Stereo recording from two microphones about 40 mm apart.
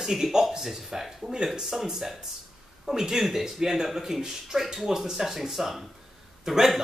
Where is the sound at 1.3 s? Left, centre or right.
Right.